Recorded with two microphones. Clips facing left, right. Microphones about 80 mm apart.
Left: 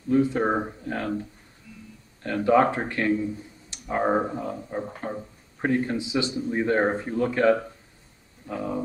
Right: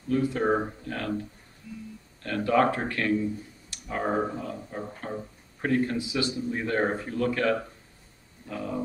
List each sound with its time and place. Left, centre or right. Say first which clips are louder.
0.1 s speech: left 3 dB; left
2.2 s speech: left 3 dB; left